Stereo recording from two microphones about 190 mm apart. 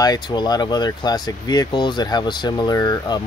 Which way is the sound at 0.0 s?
20° left (ahead or behind).